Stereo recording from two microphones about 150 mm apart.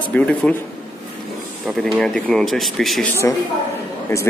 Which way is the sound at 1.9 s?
5° left (ahead or behind).